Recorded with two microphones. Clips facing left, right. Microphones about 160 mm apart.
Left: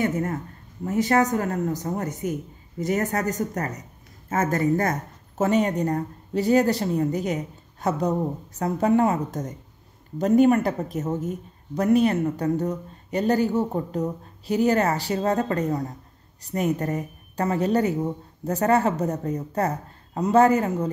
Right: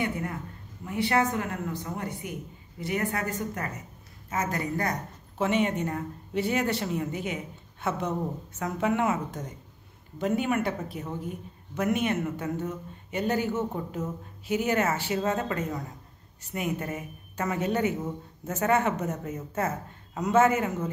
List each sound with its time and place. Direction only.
0.0 s a woman's voice: 45° left (ahead or behind)